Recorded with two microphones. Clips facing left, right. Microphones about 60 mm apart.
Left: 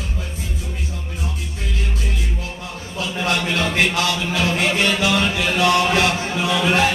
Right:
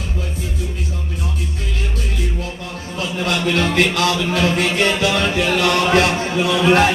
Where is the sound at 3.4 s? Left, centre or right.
Right.